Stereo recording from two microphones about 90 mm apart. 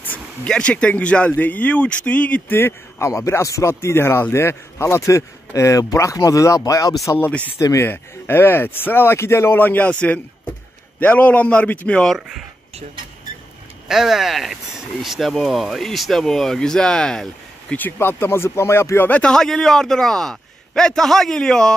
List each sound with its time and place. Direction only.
0.5 s speech: 10° left (ahead or behind); by 7.0 s 40° left (ahead or behind)
7.2 s speech: 20° left (ahead or behind)
7.5 s speech: 35° left (ahead or behind); by 12.0 s 15° left (ahead or behind)
13.8 s speech: 5° right (ahead or behind)
17.7 s speech: 25° left (ahead or behind)